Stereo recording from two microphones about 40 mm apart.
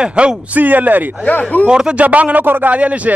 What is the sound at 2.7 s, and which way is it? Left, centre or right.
Speech, right.